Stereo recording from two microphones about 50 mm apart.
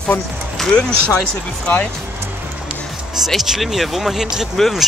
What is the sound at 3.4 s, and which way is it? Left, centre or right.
Speech, centre.